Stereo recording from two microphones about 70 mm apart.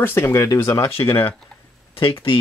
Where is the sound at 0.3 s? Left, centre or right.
Left.